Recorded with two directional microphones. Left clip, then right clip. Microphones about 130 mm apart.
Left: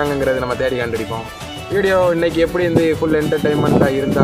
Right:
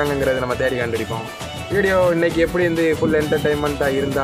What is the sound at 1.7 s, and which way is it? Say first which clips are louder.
Speech: left 2 dB; 25° left (ahead or behind).